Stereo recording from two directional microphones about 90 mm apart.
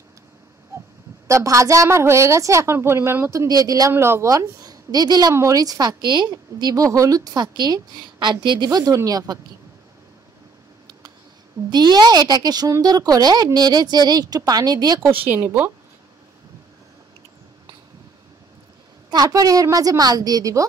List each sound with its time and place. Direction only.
1.2 s a woman's voice: 35° right (ahead or behind)
3.4 s speech: 45° right (ahead or behind)
3.9 s speech: 25° right (ahead or behind)
4.3 s speech: 40° right (ahead or behind)
6.6 s speech: 40° right (ahead or behind); by 8.6 s 60° right (ahead or behind)
8.6 s speech: 45° right (ahead or behind)
11.7 s speech: 50° right (ahead or behind)
15.2 s speech: 20° right (ahead or behind)
19.0 s a woman's voice: 45° right (ahead or behind)